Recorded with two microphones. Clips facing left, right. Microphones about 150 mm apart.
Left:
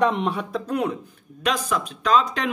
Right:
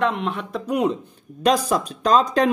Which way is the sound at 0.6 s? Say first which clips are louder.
Right 5 dB; 15° right (ahead or behind).